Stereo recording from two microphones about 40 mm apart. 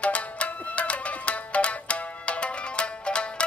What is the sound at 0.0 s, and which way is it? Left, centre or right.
Music, left.